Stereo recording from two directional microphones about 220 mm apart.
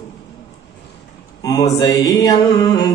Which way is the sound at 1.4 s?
15° left (ahead or behind).